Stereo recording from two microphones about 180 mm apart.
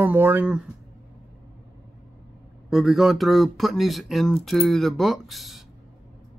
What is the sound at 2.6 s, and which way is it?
Speech, centre (ahead or behind).